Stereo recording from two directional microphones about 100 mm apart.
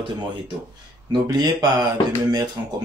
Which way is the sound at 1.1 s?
40° right (ahead or behind).